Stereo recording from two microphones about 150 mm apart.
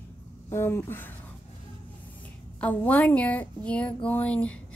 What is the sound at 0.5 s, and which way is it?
Speech, 15° left (ahead or behind).